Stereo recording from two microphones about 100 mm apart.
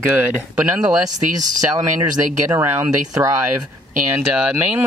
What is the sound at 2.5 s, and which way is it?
Speech, 25° right (ahead or behind).